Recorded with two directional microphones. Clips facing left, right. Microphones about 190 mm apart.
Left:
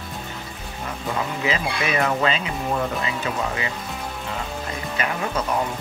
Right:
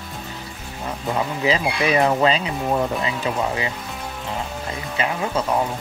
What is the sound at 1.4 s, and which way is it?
Speech, 30° right (ahead or behind).